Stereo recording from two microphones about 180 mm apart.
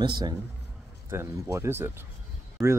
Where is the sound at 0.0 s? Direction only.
25° right (ahead or behind).